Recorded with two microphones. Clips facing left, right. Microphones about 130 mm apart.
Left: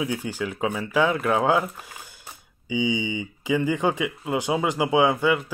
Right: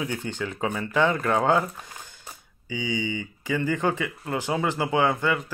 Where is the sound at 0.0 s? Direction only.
5° left (ahead or behind).